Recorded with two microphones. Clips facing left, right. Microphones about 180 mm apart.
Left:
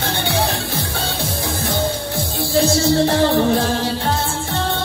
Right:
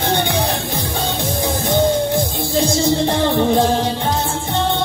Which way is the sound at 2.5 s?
20° right (ahead or behind).